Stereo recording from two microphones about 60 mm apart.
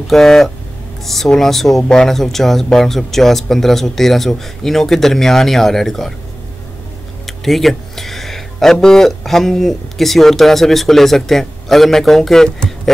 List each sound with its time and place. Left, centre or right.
0.1 s speech: centre
7.2 s speech: centre